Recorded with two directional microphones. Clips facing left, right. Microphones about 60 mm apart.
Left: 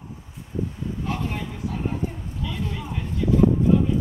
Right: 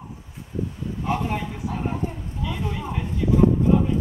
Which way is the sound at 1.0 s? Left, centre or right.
Centre.